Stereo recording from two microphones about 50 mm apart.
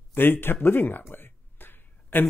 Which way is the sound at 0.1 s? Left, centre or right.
Left.